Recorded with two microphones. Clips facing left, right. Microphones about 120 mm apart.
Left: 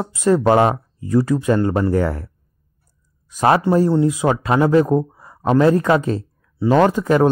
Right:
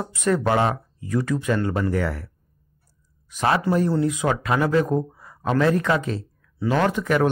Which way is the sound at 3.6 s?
25° left (ahead or behind).